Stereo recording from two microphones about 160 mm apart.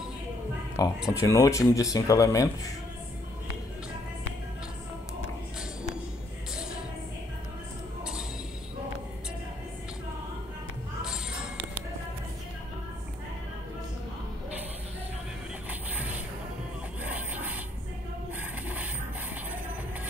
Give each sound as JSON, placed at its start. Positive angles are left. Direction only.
{"t": 0.8, "sound": "speech", "side_deg": 20}
{"t": 8.0, "sound": "a sound", "side_deg": -5}
{"t": 15.9, "sound": "music", "side_deg": -10}
{"t": 17.1, "sound": "rub", "side_deg": -10}